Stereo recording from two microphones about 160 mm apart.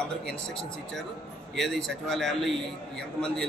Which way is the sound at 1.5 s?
5° left (ahead or behind).